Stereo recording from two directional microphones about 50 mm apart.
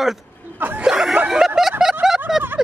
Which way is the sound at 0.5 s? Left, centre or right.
Right.